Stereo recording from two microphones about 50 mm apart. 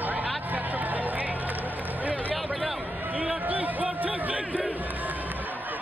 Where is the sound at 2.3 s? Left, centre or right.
Centre.